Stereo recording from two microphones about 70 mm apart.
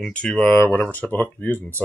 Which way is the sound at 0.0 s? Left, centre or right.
Centre.